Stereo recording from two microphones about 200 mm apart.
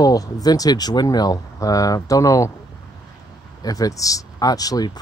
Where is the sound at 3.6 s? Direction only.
20° left (ahead or behind).